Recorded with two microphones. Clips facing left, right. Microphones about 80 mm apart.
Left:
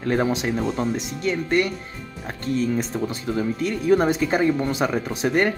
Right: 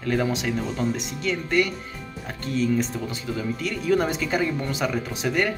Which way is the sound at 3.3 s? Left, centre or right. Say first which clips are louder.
Left 4 dB; left.